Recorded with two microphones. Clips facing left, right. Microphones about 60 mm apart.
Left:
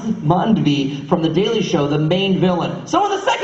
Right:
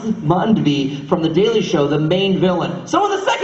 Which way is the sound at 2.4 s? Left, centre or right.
Centre.